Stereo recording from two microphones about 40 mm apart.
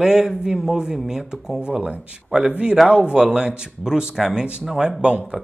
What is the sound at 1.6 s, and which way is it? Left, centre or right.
A man's voice, right.